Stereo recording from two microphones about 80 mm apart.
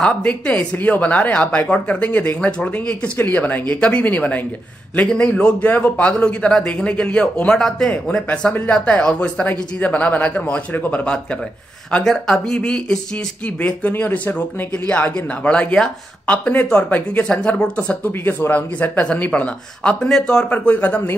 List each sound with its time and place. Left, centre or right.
0.0 s speech: centre
12.0 s speech: centre